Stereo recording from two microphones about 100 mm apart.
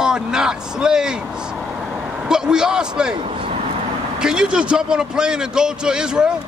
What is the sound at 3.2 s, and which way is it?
Vehicle, 80° right.